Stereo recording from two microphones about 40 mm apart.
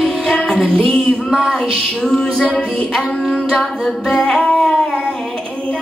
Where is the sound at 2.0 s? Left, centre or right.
Centre.